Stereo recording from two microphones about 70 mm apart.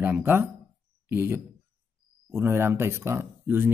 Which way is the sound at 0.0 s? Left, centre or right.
Right.